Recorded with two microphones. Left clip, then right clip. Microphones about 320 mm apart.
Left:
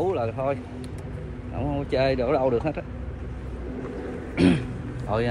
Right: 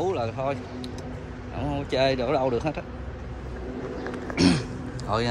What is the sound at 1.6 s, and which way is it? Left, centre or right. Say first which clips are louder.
Speech: even; centre.